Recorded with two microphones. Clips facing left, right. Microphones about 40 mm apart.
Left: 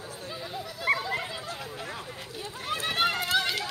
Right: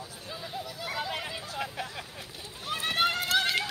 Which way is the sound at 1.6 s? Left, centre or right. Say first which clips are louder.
Right 2 dB; right.